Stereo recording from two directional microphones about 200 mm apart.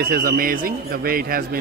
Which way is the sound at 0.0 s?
50° right (ahead or behind).